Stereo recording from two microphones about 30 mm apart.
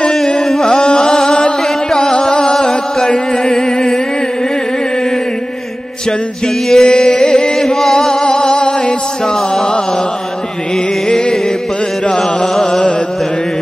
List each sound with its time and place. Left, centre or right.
0.4 s carnatic music: centre
0.7 s music: left
2.5 s chant: left
6.7 s carnatic music: left
7.6 s chant: centre
8.1 s music: left
11.1 s music: left